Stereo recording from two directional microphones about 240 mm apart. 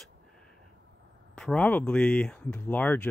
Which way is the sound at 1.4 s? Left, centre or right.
Centre.